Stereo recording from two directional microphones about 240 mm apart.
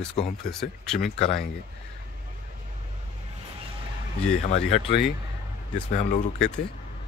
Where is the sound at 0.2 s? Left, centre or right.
Left.